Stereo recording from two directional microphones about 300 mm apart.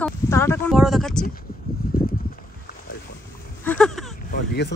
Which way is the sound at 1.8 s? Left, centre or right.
Left.